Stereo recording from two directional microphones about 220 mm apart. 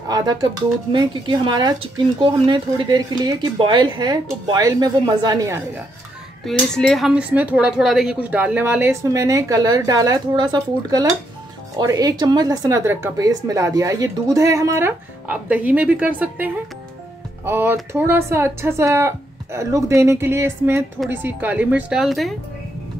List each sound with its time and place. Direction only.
0.1 s speech: 20° right (ahead or behind)
6.4 s speech: centre (ahead or behind)